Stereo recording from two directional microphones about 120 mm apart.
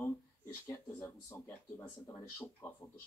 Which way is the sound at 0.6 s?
20° left (ahead or behind).